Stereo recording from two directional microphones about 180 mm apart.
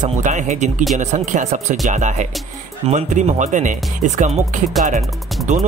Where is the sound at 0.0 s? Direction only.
45° right (ahead or behind).